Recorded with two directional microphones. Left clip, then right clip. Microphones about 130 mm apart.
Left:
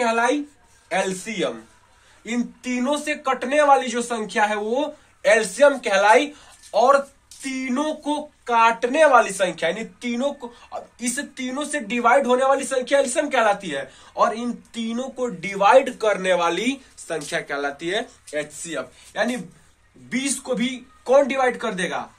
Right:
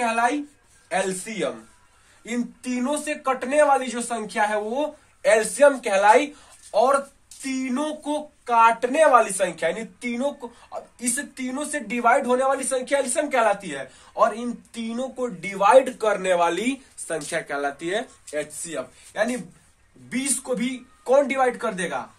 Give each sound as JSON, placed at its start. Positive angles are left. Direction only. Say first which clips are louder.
{"t": 0.0, "sound": "a man's voice", "louder": "left 2 dB", "side_deg": 0}
{"t": 1.2, "sound": "speech", "louder": "left 2 dB", "side_deg": -15}
{"t": 18.3, "sound": "speech", "louder": "left 1 dB", "side_deg": -15}